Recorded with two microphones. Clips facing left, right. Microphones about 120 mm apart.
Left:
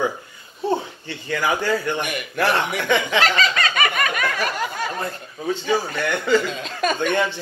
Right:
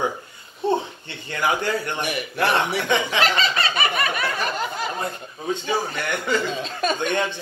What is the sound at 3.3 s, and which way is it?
Snicker, 30° right (ahead or behind).